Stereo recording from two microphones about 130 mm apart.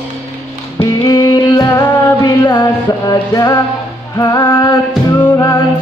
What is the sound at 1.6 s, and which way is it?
Music, 30° left (ahead or behind).